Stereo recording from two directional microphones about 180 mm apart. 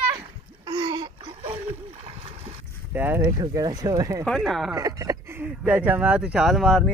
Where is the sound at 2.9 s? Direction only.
10° right (ahead or behind).